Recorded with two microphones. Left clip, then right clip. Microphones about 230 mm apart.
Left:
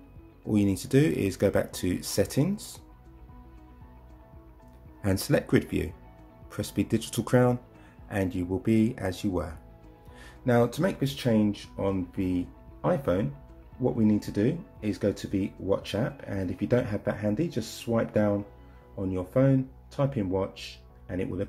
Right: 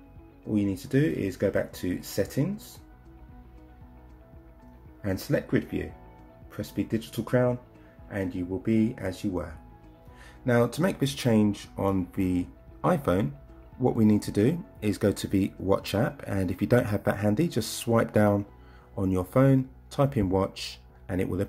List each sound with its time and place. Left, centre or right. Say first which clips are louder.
0.5 s speech: left 2 dB; centre
5.0 s speech: left 2 dB; centre
10.2 s speech: even; centre; by 21.5 s right